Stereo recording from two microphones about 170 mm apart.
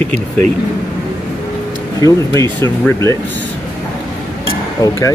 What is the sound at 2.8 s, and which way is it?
Speech, 15° left (ahead or behind).